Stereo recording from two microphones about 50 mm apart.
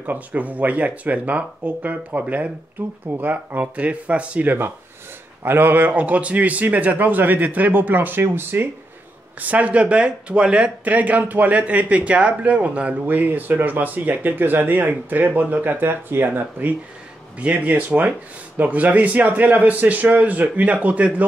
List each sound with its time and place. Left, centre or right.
0.0 s speech: right
4.5 s speech: right
9.4 s speech: right